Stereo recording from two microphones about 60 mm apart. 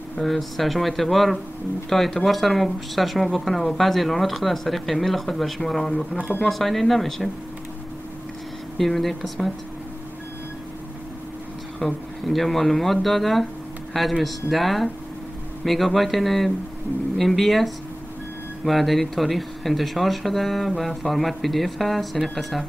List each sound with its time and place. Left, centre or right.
0.2 s speech: centre
8.7 s speech: centre
11.8 s speech: centre